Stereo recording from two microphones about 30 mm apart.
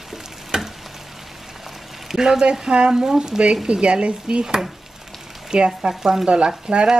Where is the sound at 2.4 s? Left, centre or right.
Right.